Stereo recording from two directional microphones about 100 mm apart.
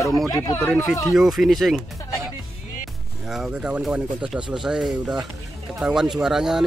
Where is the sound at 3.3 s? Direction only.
5° right (ahead or behind).